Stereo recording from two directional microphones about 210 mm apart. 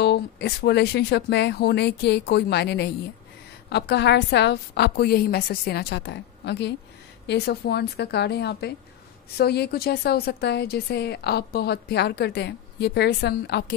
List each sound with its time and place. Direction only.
0.0 s a woman's voice: 55° left (ahead or behind)